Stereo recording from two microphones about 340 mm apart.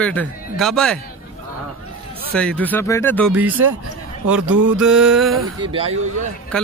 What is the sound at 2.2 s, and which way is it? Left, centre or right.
A man's voice, centre.